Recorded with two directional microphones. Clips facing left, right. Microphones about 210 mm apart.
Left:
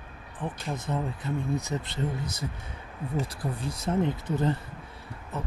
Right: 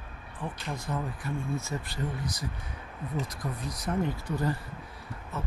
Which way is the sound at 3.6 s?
25° left (ahead or behind).